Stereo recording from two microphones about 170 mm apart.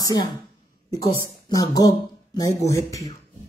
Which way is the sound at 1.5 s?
20° left (ahead or behind).